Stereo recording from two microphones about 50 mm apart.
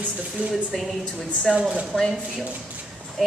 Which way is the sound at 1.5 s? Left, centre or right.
Centre.